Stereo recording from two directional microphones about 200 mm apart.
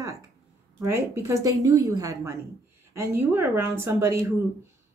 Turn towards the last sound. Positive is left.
turn(degrees=-15)  # may be behind; listen again after turning